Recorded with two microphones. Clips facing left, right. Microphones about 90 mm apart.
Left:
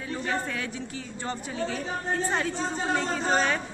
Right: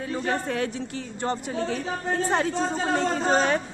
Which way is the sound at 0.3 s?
45° right (ahead or behind).